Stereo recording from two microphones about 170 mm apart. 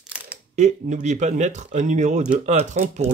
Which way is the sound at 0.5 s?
45° right (ahead or behind).